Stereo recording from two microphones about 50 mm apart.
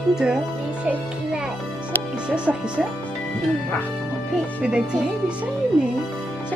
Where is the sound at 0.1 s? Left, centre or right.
Centre.